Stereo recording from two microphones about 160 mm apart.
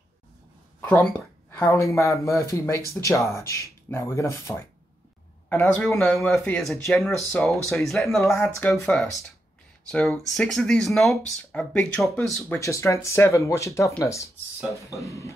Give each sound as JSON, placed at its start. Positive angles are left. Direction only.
{"t": 0.7, "sound": "speech", "side_deg": 10}
{"t": 6.9, "sound": "speech", "side_deg": 0}
{"t": 8.2, "sound": "speech", "side_deg": 20}
{"t": 9.8, "sound": "speech", "side_deg": 5}
{"t": 12.5, "sound": "speech", "side_deg": 20}